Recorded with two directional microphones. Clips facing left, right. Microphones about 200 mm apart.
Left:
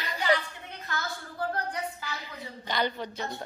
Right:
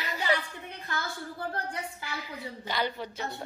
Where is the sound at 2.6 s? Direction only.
5° right (ahead or behind).